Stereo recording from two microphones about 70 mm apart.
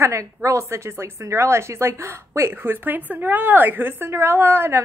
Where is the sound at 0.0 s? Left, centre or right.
Right.